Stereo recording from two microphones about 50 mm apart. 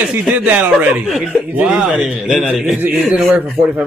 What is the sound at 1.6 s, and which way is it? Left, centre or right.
A man's voice, centre.